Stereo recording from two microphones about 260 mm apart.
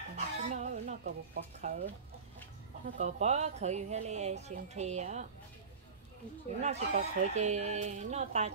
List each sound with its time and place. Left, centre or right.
0.1 s a sound: right
3.0 s speech: right
6.6 s speech: right